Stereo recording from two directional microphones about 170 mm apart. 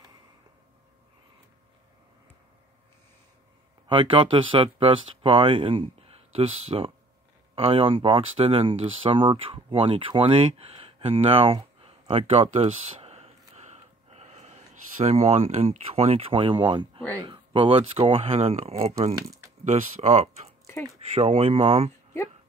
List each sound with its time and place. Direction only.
3.8 s speech: 30° right (ahead or behind)
13.6 s a sound: 40° right (ahead or behind)
17.2 s speech: 25° right (ahead or behind)